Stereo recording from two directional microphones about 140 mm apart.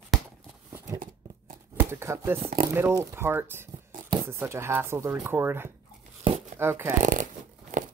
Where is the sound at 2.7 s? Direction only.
20° right (ahead or behind).